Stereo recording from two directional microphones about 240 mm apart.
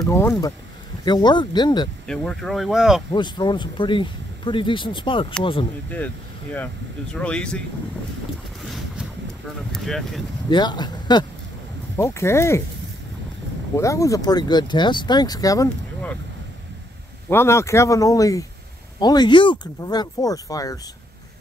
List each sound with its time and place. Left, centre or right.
0.0 s speech: centre
2.0 s speech: centre
3.1 s speech: centre
7.2 s speech: centre
9.7 s speech: centre
10.5 s speech: centre
13.7 s speech: centre
17.3 s speech: centre